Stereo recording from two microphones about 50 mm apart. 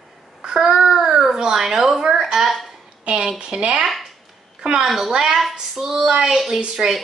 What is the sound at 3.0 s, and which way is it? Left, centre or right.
A child's voice, centre.